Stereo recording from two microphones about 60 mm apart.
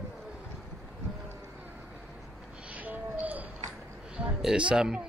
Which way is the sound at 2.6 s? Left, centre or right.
Right.